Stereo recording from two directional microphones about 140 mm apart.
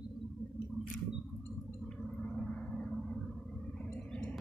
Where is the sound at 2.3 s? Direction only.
10° left (ahead or behind).